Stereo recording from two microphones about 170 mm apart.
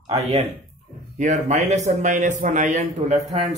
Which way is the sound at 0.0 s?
30° right (ahead or behind).